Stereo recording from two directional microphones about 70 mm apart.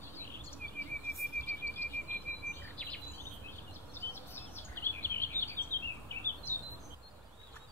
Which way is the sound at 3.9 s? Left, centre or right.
Left.